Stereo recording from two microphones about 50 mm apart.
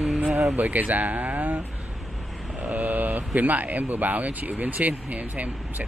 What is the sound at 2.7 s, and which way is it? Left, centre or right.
Mantra, right.